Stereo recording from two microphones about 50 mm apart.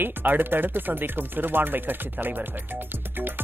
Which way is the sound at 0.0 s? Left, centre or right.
Right.